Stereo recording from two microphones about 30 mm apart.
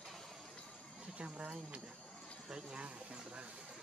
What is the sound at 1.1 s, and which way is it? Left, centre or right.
Speech, right.